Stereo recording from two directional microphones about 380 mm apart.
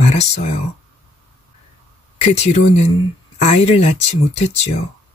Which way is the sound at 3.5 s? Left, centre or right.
Centre.